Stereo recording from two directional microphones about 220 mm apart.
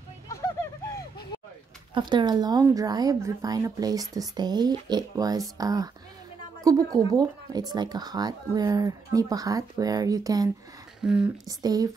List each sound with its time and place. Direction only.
0.9 s a sound: 20° left (ahead or behind)
2.0 s speech: 20° right (ahead or behind)
11.0 s speech: centre (ahead or behind)
11.4 s speech: 15° right (ahead or behind)